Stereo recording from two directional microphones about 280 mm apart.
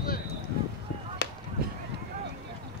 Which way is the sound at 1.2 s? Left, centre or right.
Left.